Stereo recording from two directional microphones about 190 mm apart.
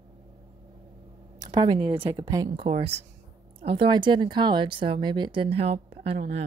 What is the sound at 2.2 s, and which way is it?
A woman's voice, 20° right (ahead or behind).